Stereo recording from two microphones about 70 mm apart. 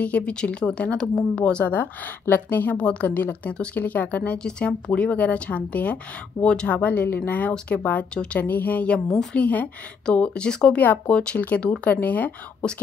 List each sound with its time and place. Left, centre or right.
0.0 s a woman's voice: centre
6.8 s a woman's voice: left
8.4 s a woman's voice: left